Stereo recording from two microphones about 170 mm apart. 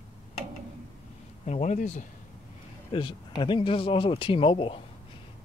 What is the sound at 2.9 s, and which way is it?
Speech, 25° left (ahead or behind).